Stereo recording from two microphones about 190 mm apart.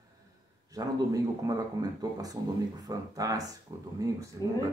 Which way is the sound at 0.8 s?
20° right (ahead or behind).